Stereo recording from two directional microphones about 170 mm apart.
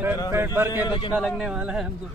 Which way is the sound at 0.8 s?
30° left (ahead or behind).